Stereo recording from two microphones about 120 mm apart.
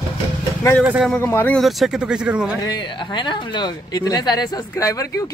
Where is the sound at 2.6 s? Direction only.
35° left (ahead or behind).